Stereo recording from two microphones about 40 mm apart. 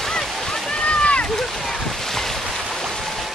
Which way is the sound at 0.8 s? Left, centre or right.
Left.